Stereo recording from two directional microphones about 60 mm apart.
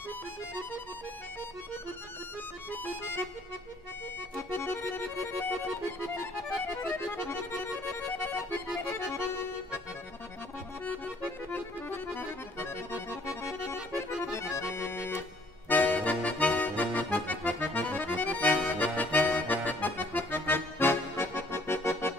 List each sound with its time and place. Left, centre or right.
4.6 s accordion: left
11.5 s accordion: left
15.7 s accordion: left